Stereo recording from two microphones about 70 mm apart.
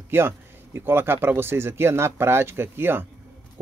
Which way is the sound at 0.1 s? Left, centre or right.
Right.